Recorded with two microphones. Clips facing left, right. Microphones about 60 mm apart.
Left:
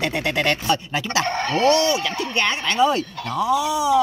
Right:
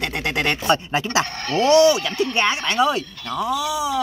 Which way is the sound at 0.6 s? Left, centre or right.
Right.